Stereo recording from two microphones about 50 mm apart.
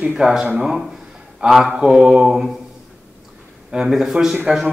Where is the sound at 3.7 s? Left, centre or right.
Centre.